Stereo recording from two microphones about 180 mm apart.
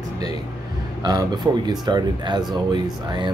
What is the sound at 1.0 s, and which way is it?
Speech, 20° right (ahead or behind).